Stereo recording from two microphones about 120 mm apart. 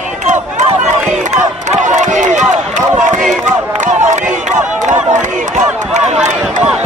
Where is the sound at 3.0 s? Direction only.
90° right.